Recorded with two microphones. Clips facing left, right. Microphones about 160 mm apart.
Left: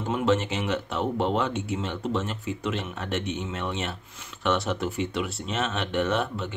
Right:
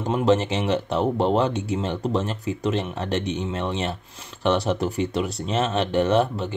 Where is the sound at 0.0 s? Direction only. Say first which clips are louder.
Right 4 dB; 35° right (ahead or behind).